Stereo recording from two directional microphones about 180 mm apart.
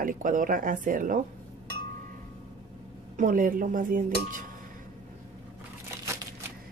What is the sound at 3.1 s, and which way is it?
Speech, 50° right (ahead or behind).